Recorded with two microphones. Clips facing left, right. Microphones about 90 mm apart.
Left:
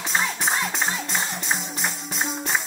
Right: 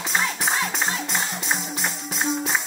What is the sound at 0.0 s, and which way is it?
Music, centre (ahead or behind).